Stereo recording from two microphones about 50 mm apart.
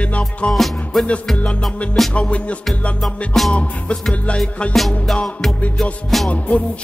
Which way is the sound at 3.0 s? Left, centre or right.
Centre.